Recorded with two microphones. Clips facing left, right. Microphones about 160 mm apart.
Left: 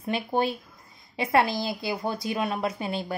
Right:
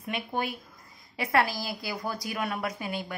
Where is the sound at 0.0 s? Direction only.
30° left (ahead or behind).